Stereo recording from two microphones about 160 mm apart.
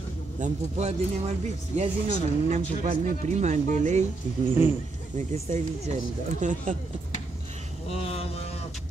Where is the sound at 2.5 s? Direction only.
45° right (ahead or behind).